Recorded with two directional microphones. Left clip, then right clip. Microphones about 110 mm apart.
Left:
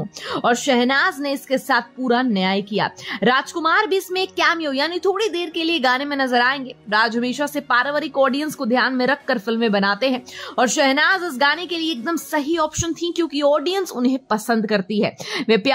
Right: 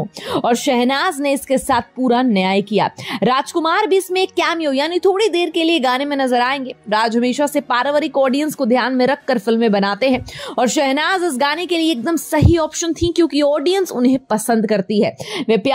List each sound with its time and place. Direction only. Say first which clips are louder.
0.3 s a woman's voice: right 2 dB; 35° right (ahead or behind)
15.4 s speech: right 1 dB; 15° right (ahead or behind)